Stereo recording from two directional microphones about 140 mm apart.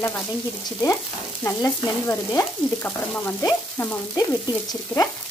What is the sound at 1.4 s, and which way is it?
Frying, 20° left (ahead or behind).